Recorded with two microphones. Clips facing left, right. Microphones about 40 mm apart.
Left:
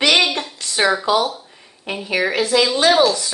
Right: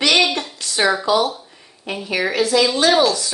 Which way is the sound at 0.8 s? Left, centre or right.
Centre.